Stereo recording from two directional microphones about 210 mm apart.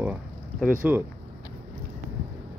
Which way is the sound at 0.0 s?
5° right (ahead or behind).